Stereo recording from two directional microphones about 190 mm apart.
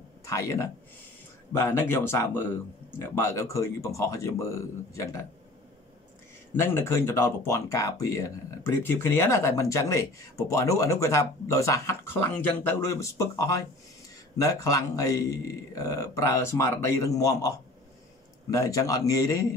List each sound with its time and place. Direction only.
0.2 s speech: 15° left (ahead or behind)
6.5 s speech: 15° left (ahead or behind)